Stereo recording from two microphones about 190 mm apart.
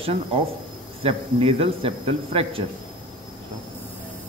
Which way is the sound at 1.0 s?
30° right (ahead or behind).